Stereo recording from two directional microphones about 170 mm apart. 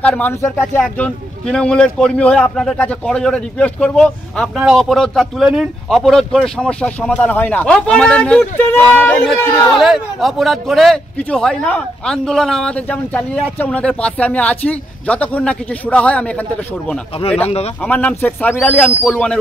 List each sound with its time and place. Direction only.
0.0 s a man's voice: 10° left (ahead or behind)
17.2 s speech: 35° left (ahead or behind)
17.8 s a man's voice: 10° left (ahead or behind)